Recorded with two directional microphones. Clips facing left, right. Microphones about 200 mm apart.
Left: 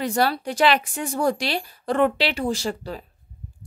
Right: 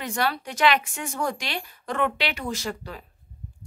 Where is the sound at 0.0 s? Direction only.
35° left (ahead or behind).